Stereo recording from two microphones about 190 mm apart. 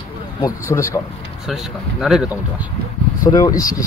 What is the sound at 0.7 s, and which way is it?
Speech, 15° left (ahead or behind).